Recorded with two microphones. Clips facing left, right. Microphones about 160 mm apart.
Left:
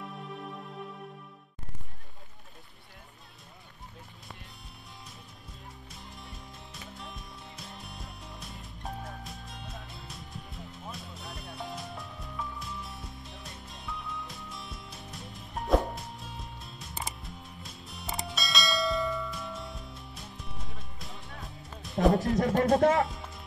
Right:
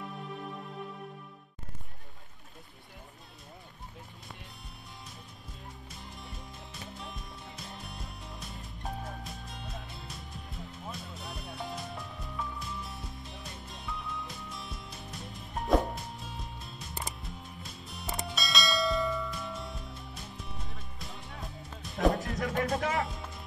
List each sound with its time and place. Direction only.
0.0 s music: centre (ahead or behind)
5.9 s music: centre (ahead or behind)
22.4 s speech: 45° left (ahead or behind)
23.0 s music: centre (ahead or behind)